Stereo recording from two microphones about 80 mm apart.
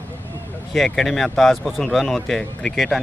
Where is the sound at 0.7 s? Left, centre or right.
Centre.